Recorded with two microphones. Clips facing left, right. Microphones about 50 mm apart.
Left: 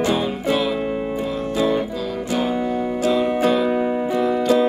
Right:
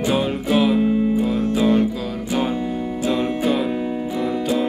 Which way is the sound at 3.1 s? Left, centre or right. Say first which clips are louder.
Left 2 dB; centre.